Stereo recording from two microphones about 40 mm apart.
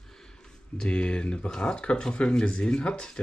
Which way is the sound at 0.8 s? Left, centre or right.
Left.